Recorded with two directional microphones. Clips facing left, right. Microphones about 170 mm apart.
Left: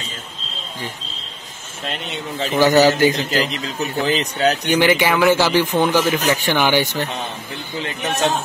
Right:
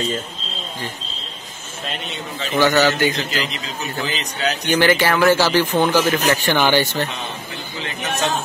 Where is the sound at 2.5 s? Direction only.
35° left (ahead or behind).